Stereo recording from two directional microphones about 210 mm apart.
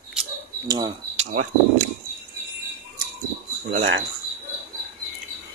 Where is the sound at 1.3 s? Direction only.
35° right (ahead or behind).